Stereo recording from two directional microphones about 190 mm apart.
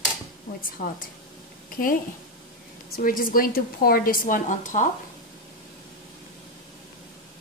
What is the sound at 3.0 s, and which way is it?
A woman's voice, 50° left (ahead or behind).